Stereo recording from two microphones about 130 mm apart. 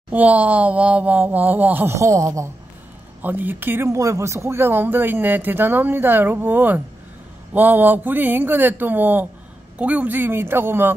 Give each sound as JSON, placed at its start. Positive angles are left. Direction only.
{"t": 0.1, "sound": "speech", "side_deg": -10}
{"t": 3.2, "sound": "speech", "side_deg": -15}